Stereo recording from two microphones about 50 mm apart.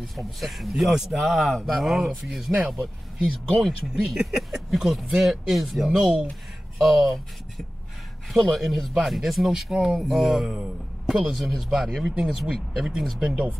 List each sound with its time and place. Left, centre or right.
0.4 s speech: centre